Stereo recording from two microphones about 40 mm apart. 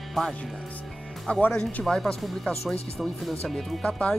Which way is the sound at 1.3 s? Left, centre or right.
Left.